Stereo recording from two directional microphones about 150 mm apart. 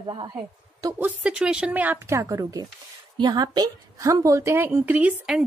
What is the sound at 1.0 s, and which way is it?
A woman's voice, 5° right (ahead or behind).